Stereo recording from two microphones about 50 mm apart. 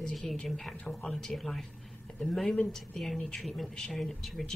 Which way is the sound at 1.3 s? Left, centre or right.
Centre.